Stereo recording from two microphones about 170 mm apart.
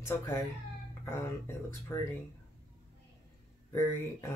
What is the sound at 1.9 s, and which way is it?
Speech, 15° left (ahead or behind).